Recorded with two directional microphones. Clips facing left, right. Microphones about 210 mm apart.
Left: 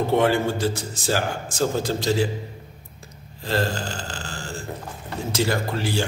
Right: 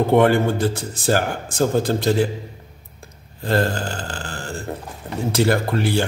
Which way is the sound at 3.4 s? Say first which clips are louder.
Right 4 dB; 55° right (ahead or behind).